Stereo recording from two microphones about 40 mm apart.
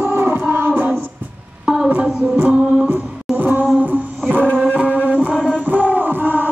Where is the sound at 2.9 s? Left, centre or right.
Right.